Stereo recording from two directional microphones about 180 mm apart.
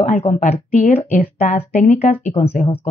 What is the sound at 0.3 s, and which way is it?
Speech, 45° left (ahead or behind).